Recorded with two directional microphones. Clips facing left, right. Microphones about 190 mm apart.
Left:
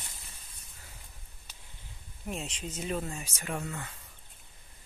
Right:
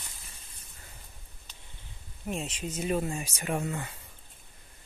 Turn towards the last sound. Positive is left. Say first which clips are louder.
# right 5 dB
turn(degrees=-20)  # may be behind; listen again after turning